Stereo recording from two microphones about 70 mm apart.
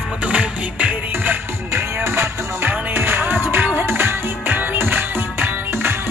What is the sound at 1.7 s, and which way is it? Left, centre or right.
Music, right.